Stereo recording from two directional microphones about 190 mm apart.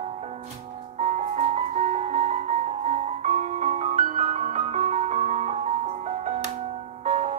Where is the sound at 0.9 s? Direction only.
35° right (ahead or behind).